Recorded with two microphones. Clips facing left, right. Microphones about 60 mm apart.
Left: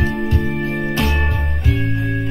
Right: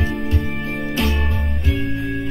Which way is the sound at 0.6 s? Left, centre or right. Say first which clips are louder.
Left 3 dB; left.